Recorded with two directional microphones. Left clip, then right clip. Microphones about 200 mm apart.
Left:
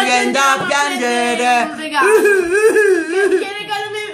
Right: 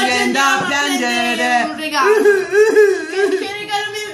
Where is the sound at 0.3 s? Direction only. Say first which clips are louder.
Left 1 dB; 35° left (ahead or behind).